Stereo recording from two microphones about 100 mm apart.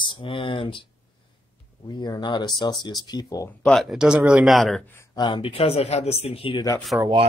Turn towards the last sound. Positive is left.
turn(degrees=-10)  # may be behind; listen again after turning